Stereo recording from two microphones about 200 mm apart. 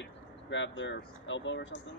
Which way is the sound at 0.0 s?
70° left (ahead or behind).